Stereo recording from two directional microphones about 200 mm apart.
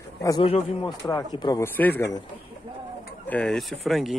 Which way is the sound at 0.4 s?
30° left (ahead or behind).